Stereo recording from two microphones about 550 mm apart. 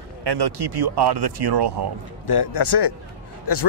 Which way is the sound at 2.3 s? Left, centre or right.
Left.